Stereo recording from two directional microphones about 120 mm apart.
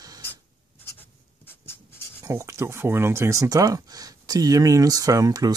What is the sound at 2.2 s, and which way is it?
Speech, 25° right (ahead or behind).